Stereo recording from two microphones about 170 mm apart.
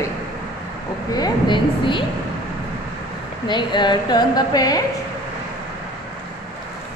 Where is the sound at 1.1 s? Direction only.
25° left (ahead or behind).